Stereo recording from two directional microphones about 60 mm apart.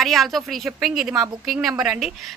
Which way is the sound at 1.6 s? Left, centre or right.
Centre.